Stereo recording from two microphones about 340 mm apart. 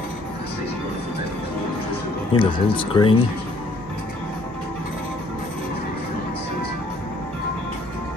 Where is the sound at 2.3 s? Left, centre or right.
Centre.